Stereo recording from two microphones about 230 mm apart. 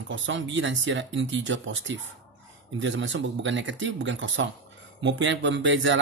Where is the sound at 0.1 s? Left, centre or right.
Right.